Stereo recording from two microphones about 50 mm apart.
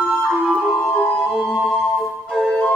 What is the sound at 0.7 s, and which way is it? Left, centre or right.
Music, left.